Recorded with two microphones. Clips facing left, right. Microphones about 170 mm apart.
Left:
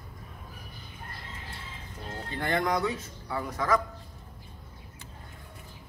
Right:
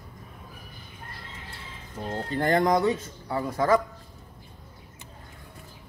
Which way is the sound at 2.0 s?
50° right (ahead or behind).